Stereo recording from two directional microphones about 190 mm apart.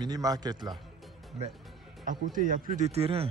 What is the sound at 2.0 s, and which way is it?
Speech, 45° right (ahead or behind).